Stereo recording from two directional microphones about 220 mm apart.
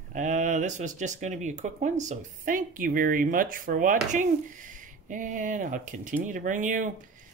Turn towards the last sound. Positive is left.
turn(degrees=-35)  # may be behind; listen again after turning